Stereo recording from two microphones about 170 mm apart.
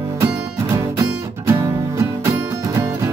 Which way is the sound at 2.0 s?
20° right (ahead or behind).